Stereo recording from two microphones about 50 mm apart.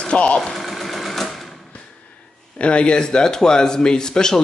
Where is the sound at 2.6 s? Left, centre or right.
Left.